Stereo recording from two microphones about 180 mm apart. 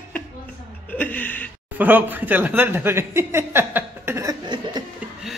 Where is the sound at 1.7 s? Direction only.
10° right (ahead or behind).